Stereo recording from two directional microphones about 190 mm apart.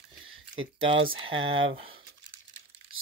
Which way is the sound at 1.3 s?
90° right.